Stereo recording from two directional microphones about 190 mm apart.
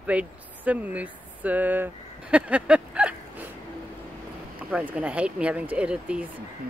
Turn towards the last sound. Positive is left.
turn(degrees=-5)  # may be behind; listen again after turning